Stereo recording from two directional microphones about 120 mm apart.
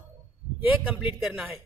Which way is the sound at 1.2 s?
5° right (ahead or behind).